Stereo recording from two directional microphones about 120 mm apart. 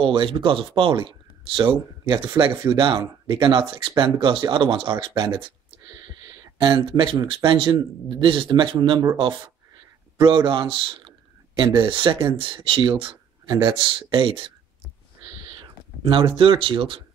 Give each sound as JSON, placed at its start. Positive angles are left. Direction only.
{"t": 0.0, "sound": "speech", "side_deg": -45}
{"t": 6.6, "sound": "speech", "side_deg": -40}
{"t": 14.1, "sound": "speech", "side_deg": -40}
{"t": 15.5, "sound": "speech", "side_deg": -45}